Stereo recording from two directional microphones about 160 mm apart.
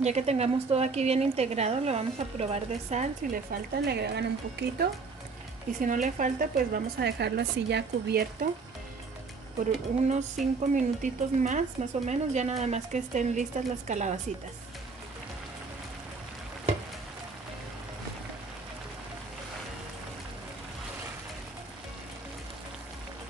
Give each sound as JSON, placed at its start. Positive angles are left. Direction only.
{"t": 0.0, "sound": "speech", "side_deg": -40}
{"t": 3.7, "sound": "a woman's voice", "side_deg": -90}
{"t": 5.8, "sound": "a woman's voice", "side_deg": -55}
{"t": 10.0, "sound": "speech", "side_deg": -50}